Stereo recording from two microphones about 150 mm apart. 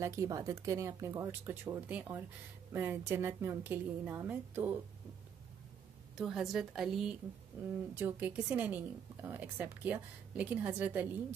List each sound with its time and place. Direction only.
0.0 s a woman's voice: 20° right (ahead or behind)
6.1 s a woman's voice: 5° right (ahead or behind)